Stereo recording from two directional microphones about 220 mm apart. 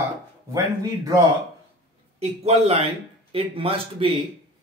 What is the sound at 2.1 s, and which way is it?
A man's voice, 30° right (ahead or behind).